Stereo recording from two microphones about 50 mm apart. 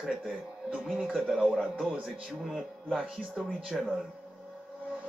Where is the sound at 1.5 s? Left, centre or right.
Centre.